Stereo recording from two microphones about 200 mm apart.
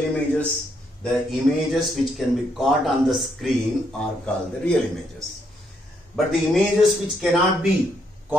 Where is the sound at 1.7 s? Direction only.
Centre (ahead or behind).